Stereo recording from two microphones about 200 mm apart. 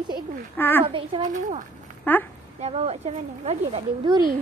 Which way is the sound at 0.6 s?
10° left (ahead or behind).